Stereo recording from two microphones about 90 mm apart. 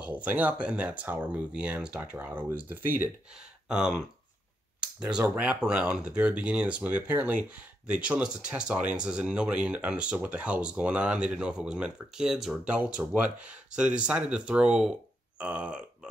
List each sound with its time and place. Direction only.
0.0 s speech: 15° right (ahead or behind)
3.6 s speech: 10° right (ahead or behind)
4.7 s a sound: 10° right (ahead or behind)
5.3 s speech: 10° right (ahead or behind)
15.3 s burping: 10° right (ahead or behind)